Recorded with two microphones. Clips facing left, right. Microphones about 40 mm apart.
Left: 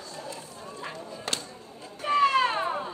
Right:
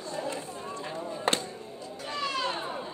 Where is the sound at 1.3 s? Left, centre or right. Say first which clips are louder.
Right 6 dB; right.